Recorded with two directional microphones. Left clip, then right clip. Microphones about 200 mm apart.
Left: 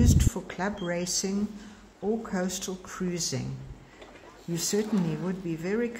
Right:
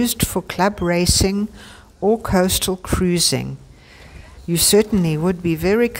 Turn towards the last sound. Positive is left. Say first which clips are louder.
# right 13 dB
turn(degrees=-50)  # may be behind; listen again after turning